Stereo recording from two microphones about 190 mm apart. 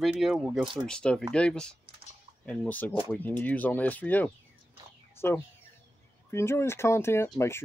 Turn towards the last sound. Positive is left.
turn(degrees=15)  # may be behind; listen again after turning